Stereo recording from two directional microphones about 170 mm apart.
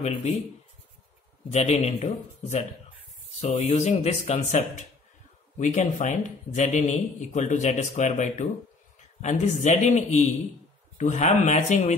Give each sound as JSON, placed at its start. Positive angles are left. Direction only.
{"t": 0.0, "sound": "speech", "side_deg": 40}
{"t": 1.5, "sound": "speech", "side_deg": 40}